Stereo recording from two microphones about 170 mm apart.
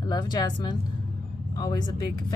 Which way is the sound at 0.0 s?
25° left (ahead or behind).